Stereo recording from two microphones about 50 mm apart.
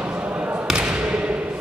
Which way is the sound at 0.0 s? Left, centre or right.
Right.